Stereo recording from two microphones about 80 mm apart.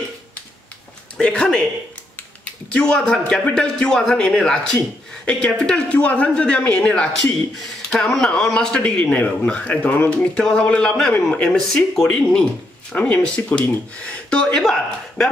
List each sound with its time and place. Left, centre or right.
1.1 s a man's voice: centre